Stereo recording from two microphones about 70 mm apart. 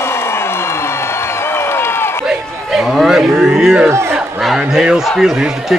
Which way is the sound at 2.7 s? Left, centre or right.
Centre.